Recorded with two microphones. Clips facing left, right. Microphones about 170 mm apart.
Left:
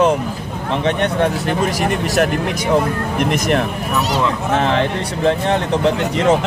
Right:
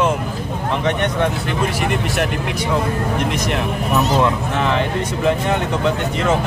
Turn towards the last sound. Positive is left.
turn(degrees=35)  # may be behind; listen again after turning